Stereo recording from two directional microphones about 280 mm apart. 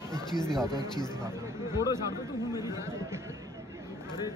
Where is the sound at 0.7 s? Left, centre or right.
Centre.